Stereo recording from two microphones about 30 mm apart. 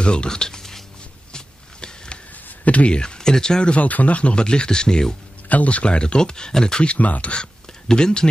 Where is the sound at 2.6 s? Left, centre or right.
Left.